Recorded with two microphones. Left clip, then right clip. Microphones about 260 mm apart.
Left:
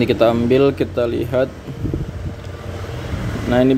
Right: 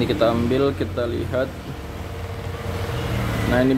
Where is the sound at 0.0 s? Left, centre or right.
Left.